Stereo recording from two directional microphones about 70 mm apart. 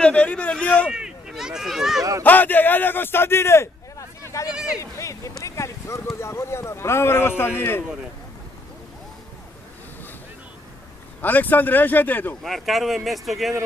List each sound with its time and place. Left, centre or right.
0.0 s speech: centre
0.9 s speech: centre
2.2 s speech: left
4.2 s a sound: left
5.4 s speech: left
11.1 s speech: left
12.4 s speech: centre